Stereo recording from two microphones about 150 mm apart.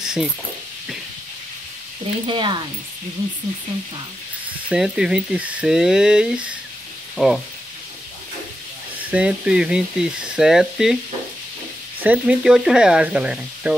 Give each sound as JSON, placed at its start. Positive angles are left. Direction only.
{"t": 0.0, "sound": "snake", "side_deg": -5}
{"t": 2.2, "sound": "speech", "side_deg": -30}
{"t": 4.6, "sound": "speech", "side_deg": -5}
{"t": 9.1, "sound": "speech", "side_deg": -5}
{"t": 12.0, "sound": "speech", "side_deg": -10}